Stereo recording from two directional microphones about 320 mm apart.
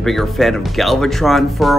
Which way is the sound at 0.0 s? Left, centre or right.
Centre.